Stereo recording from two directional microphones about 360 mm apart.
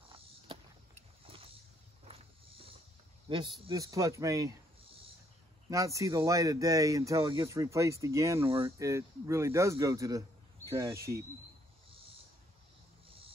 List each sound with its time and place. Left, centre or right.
1.2 s a sound: centre
3.3 s speech: centre
5.7 s speech: centre